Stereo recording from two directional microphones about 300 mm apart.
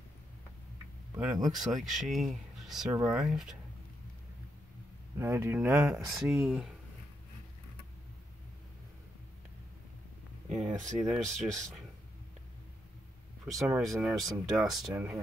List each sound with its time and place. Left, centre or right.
1.1 s speech: centre
5.2 s speech: centre
10.9 s speech: right
13.5 s speech: centre